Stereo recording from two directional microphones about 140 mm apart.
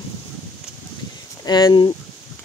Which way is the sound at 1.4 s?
30° left (ahead or behind).